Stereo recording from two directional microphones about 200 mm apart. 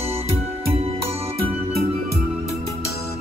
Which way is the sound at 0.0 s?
30° right (ahead or behind).